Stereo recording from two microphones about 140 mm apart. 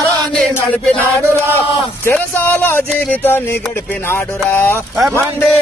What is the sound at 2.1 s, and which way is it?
Speech, 10° left (ahead or behind).